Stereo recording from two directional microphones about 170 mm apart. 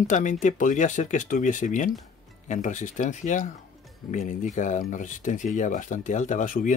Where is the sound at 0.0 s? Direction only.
45° left (ahead or behind).